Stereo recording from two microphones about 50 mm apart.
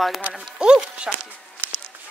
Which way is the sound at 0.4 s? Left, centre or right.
Centre.